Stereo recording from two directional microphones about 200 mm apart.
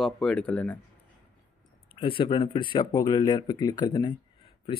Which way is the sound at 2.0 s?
25° left (ahead or behind).